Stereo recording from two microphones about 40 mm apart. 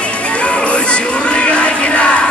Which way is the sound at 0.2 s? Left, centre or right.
Left.